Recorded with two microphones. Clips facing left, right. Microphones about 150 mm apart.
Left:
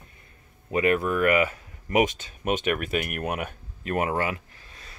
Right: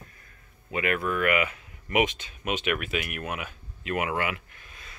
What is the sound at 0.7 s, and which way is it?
Speech, 35° left (ahead or behind).